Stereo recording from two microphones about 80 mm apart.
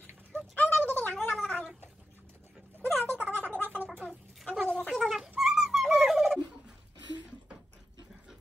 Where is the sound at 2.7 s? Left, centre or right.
Left.